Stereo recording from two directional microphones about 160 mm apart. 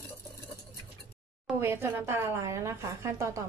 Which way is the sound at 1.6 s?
15° right (ahead or behind).